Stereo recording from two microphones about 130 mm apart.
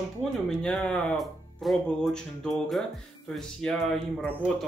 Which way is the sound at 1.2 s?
Centre (ahead or behind).